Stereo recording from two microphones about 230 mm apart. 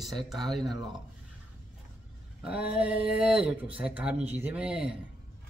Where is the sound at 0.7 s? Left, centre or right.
Centre.